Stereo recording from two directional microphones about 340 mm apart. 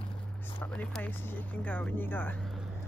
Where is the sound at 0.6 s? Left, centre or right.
Centre.